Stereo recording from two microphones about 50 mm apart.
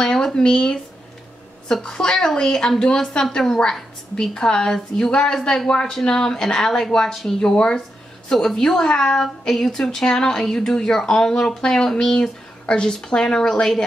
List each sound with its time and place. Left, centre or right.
0.0 s a woman's voice: centre